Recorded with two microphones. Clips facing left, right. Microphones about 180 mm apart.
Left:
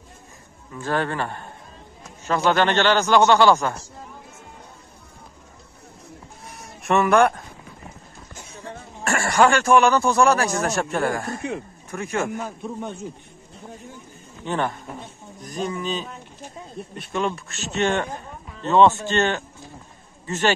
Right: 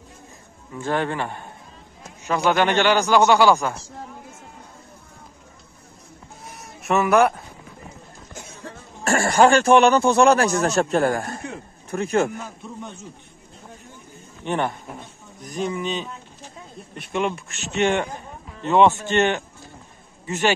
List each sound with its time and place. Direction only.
0.7 s a man's voice: 20° right (ahead or behind)
6.5 s a sound: centre (ahead or behind)
9.0 s speech: 35° right (ahead or behind)
10.6 s speech: 35° right (ahead or behind)
14.4 s a man's voice: 20° right (ahead or behind)
17.1 s a man's voice: 15° right (ahead or behind)